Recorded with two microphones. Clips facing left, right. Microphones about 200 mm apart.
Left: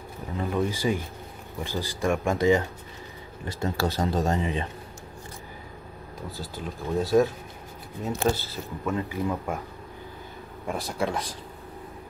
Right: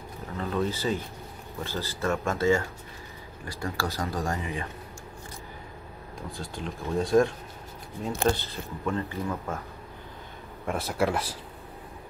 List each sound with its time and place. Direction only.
0.4 s a sound: 15° left (ahead or behind)
1.6 s speech: 15° left (ahead or behind)
6.3 s speech: 5° left (ahead or behind)
10.6 s speech: centre (ahead or behind)